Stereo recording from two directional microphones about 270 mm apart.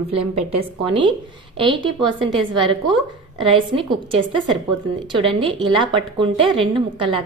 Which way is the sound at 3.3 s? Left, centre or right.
Centre.